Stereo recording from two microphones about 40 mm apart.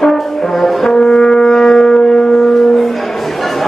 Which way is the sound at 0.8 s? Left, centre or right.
Centre.